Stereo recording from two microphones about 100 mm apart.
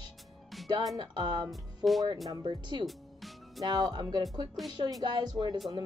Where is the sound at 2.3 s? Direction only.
50° right (ahead or behind).